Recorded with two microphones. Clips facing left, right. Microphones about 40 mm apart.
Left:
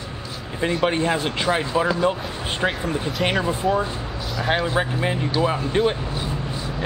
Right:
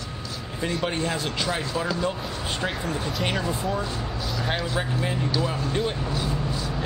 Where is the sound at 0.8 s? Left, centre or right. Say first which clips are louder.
Left 6 dB; left.